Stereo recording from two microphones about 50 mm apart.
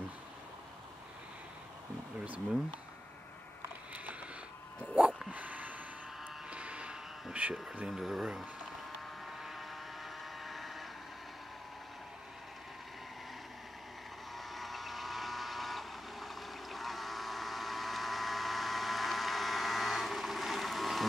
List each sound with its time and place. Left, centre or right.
3.9 s a sound: right
5.3 s a sound: right
7.4 s speech: right
7.9 s speech: centre
9.2 s vehicle: centre
14.3 s vehicle: centre